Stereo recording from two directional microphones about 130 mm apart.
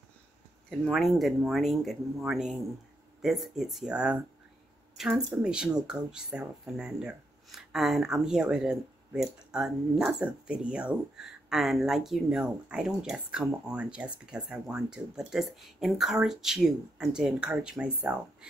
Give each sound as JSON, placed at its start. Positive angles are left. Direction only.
{"t": 0.7, "sound": "speech", "side_deg": 0}